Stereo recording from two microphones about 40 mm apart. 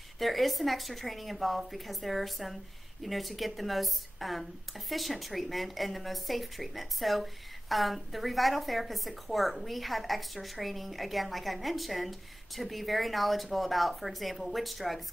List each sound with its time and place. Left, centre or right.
0.2 s a woman's voice: centre